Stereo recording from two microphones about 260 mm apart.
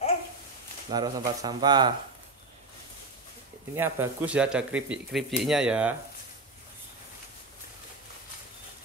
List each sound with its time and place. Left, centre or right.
0.8 s speech: centre
3.7 s speech: centre